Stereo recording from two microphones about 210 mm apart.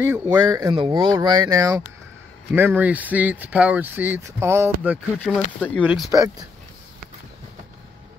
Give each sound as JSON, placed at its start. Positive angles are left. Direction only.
{"t": 0.0, "sound": "speech", "side_deg": -10}
{"t": 0.6, "sound": "speech", "side_deg": -25}
{"t": 5.3, "sound": "speech", "side_deg": 0}
{"t": 6.0, "sound": "speech", "side_deg": -15}